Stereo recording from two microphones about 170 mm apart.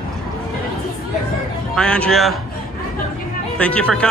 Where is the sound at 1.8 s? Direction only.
5° left (ahead or behind).